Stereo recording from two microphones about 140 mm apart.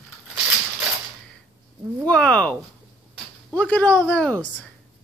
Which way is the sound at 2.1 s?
10° left (ahead or behind).